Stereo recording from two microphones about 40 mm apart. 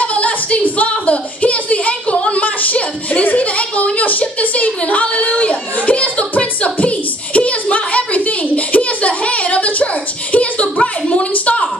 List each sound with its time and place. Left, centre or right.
0.0 s singing: left
0.7 s speech: left
5.8 s a sound: left